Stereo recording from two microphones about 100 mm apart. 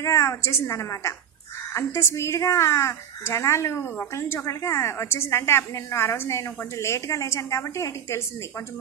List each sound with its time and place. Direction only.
0.0 s speech: 30° left (ahead or behind)